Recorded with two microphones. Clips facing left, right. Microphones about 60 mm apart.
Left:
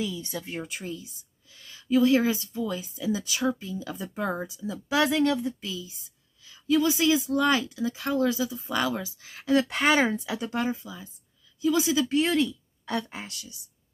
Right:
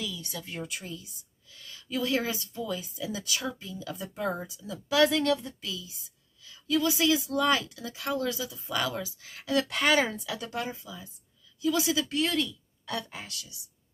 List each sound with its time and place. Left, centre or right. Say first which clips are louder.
0.0 s speech: left 5 dB; left
6.4 s a sound: left 4 dB; centre
7.0 s speech: left 3 dB; centre
9.5 s speech: left 3 dB; left